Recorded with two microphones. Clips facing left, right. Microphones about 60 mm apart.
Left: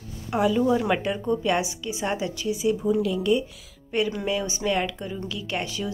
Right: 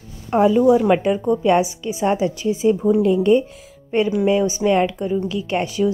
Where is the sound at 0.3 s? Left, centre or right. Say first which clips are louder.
Right 7 dB; right.